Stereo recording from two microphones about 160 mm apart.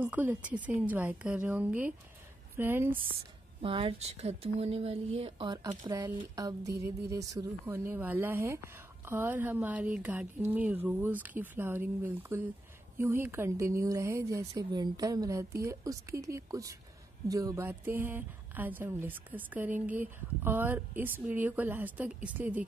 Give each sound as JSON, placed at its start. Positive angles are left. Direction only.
{"t": 0.0, "sound": "speech", "side_deg": -10}
{"t": 3.6, "sound": "speech", "side_deg": -35}